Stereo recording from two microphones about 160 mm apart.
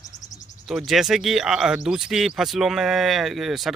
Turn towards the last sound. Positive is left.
turn(degrees=0)  # may be behind; listen again after turning